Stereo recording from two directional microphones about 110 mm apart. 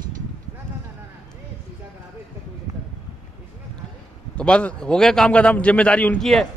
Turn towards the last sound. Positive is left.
turn(degrees=10)  # may be behind; listen again after turning